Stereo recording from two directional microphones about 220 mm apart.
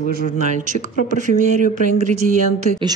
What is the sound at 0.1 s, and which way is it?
Speech, 35° right (ahead or behind).